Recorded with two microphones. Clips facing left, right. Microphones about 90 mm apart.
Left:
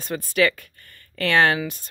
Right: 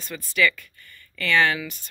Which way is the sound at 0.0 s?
45° left (ahead or behind).